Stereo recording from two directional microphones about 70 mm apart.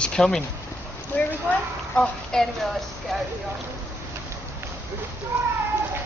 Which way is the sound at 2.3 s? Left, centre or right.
Centre.